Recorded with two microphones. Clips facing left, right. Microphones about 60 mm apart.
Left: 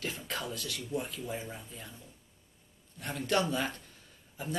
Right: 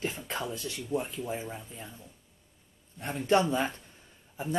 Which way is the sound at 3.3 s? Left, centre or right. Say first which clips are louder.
Right 5 dB; right.